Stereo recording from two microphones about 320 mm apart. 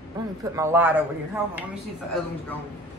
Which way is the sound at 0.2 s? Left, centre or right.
Centre.